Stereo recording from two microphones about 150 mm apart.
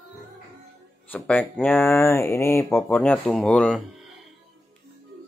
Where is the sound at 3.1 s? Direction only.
5° left (ahead or behind).